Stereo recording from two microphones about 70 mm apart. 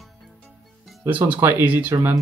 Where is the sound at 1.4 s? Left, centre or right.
Right.